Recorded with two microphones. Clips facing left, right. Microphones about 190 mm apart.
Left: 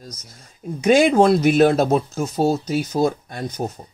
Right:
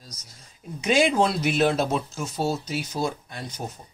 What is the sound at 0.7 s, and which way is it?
Speech, 45° left (ahead or behind).